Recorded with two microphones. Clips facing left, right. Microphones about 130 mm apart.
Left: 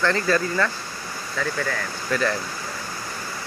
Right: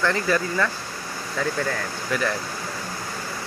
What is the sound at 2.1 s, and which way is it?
Speech, 10° right (ahead or behind).